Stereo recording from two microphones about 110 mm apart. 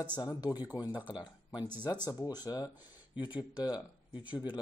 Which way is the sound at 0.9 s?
15° right (ahead or behind).